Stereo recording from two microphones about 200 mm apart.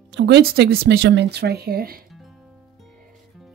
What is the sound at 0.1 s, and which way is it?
Speech, 60° right (ahead or behind).